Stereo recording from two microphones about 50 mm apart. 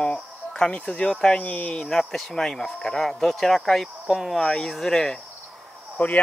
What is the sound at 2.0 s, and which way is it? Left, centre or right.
Speech, centre.